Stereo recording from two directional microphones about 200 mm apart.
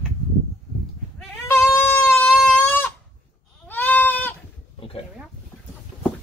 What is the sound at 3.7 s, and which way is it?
Goat, 10° left (ahead or behind).